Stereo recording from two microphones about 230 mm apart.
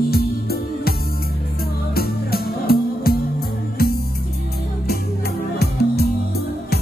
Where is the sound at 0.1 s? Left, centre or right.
Left.